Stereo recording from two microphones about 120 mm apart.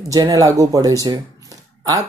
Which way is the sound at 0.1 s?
30° right (ahead or behind).